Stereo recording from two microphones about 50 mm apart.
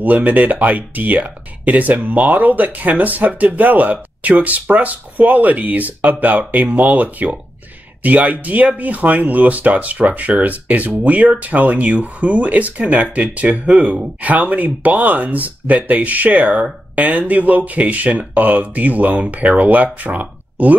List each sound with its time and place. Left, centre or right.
0.0 s speech: right